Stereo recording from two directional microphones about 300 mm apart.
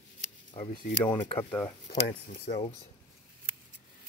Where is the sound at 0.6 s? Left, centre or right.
Centre.